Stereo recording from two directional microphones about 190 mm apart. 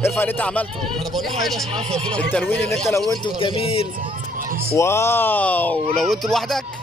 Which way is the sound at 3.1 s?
25° left (ahead or behind).